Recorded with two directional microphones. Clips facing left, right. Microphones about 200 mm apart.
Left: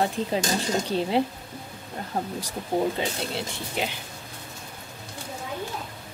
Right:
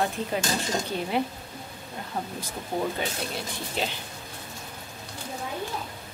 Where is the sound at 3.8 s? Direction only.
15° left (ahead or behind).